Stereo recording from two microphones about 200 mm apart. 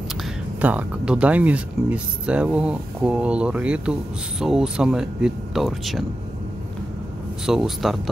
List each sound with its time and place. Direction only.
0.2 s speech: 5° right (ahead or behind)
7.4 s speech: centre (ahead or behind)